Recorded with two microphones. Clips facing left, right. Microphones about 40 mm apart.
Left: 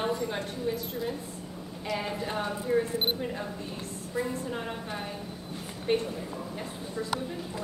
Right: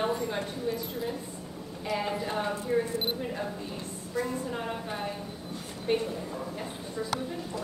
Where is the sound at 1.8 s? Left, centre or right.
Centre.